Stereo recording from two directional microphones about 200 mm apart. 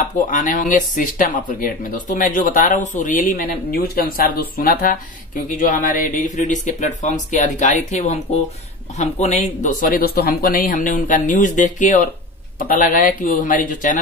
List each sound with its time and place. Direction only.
0.3 s speech: 40° left (ahead or behind)